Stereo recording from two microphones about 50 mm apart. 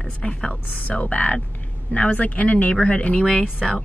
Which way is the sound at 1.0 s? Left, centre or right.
Left.